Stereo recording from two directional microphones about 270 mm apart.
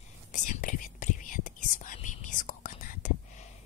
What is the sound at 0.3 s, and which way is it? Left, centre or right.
Whispering, left.